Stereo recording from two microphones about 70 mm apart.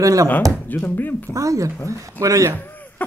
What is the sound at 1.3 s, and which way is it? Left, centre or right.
Speech, right.